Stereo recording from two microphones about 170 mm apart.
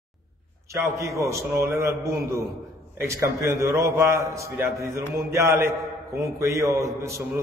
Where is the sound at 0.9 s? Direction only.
15° right (ahead or behind).